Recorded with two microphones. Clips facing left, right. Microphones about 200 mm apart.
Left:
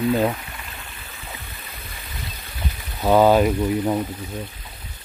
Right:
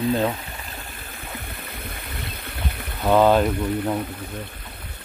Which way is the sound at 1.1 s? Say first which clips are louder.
Right 4 dB; 55° right (ahead or behind).